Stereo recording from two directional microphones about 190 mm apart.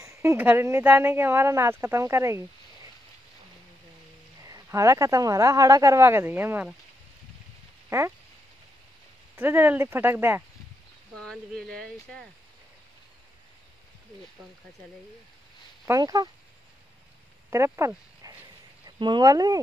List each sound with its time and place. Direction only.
0.0 s speech: 15° right (ahead or behind)
4.5 s speech: 15° right (ahead or behind)
9.4 s speech: 10° right (ahead or behind)
11.1 s speech: 5° left (ahead or behind)
15.9 s speech: 20° right (ahead or behind)
17.5 s speech: 15° right (ahead or behind)